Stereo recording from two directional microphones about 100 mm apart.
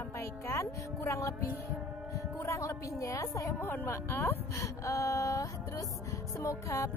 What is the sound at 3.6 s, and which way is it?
Speech, 20° left (ahead or behind).